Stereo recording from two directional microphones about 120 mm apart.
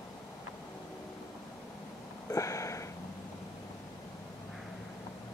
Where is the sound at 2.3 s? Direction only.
25° left (ahead or behind).